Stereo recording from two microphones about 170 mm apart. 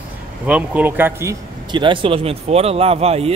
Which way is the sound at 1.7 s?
30° right (ahead or behind).